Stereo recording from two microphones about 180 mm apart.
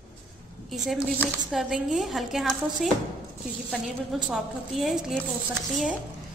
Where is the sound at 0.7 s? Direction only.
Centre (ahead or behind).